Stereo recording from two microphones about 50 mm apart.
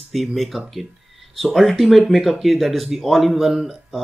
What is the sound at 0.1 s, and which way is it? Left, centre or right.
Speech, centre.